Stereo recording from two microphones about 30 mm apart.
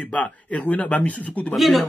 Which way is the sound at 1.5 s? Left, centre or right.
Centre.